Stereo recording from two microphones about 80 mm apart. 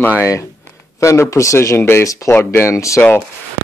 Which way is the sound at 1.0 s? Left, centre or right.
Left.